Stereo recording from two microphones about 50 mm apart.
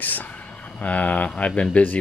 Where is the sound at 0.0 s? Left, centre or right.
Left.